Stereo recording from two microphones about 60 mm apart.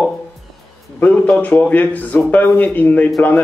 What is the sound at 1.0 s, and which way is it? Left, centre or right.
Speech, left.